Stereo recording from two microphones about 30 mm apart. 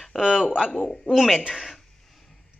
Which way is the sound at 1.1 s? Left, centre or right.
Left.